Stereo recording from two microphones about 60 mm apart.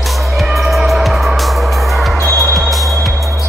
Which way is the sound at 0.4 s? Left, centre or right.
Centre.